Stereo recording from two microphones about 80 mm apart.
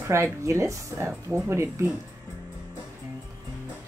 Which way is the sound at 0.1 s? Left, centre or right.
Right.